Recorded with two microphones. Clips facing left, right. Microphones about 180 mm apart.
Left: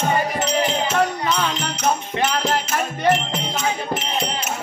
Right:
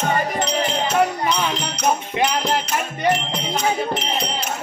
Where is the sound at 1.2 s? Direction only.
15° right (ahead or behind).